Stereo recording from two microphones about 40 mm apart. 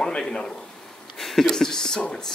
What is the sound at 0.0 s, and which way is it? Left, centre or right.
Speech, centre.